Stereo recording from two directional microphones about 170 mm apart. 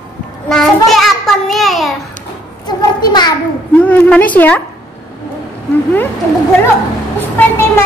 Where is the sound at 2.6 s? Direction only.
25° left (ahead or behind).